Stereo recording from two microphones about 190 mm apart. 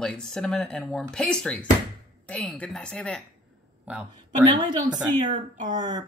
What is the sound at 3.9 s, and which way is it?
Speech, 5° right (ahead or behind).